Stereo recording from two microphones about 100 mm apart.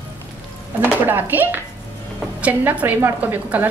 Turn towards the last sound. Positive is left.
turn(degrees=-20)  # may be behind; listen again after turning